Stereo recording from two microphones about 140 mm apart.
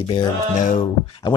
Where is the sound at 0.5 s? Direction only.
55° left (ahead or behind).